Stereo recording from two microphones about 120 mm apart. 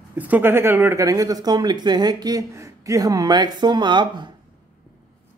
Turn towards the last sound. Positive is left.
turn(degrees=-40)  # may be behind; listen again after turning